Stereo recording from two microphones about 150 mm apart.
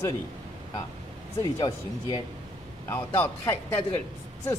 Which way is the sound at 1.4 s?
25° left (ahead or behind).